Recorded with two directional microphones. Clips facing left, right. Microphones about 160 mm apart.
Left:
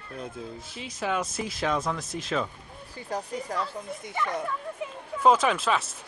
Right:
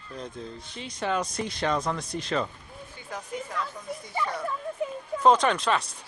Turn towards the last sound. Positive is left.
turn(degrees=5)  # may be behind; listen again after turning